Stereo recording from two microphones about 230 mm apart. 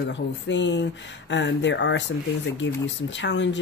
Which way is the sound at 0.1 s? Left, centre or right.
Left.